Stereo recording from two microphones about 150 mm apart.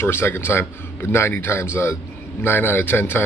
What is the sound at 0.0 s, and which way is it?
Speech, 15° left (ahead or behind).